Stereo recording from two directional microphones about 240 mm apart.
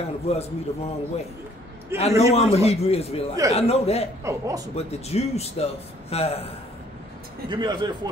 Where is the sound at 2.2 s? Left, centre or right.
Left.